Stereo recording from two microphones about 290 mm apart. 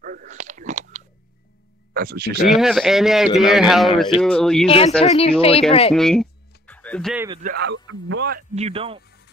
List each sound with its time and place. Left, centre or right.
0.0 s a sound: right
2.0 s speech: right
2.4 s speech: centre
4.6 s speech: centre
5.9 s music: centre
7.4 s speech: right; by 9.0 s centre